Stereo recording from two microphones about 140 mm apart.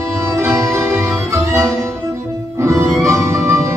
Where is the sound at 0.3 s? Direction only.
20° right (ahead or behind).